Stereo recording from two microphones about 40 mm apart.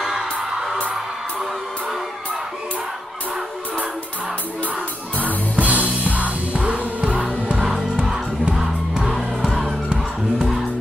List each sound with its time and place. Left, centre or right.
0.0 s music: centre
5.6 s music: right
7.9 s music: centre